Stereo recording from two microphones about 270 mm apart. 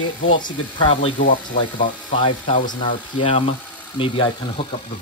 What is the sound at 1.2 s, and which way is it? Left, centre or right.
Wood, left.